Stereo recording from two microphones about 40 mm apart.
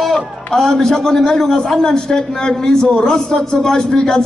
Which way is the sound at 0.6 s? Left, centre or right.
Centre.